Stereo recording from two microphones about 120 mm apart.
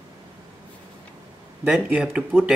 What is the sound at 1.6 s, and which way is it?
Speech, 10° right (ahead or behind).